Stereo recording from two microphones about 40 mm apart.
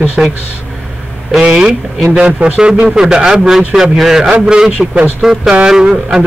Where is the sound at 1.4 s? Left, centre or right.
Right.